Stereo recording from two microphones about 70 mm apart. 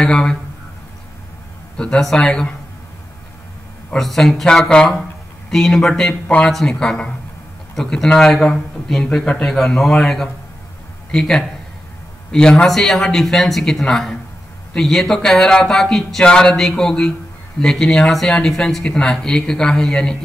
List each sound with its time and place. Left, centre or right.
0.0 s speech: centre
1.8 s speech: centre
3.9 s speech: centre
6.2 s a man's voice: centre